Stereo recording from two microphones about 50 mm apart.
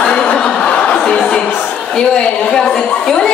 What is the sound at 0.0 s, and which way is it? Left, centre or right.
Chuckle, left.